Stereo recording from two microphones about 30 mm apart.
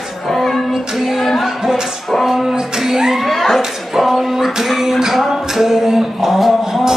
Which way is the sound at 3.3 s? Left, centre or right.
Centre.